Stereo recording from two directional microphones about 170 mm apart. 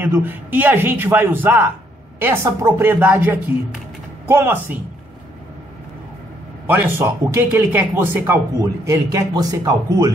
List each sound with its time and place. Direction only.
0.0 s a man's voice: 10° right (ahead or behind)
6.7 s a man's voice: 10° right (ahead or behind)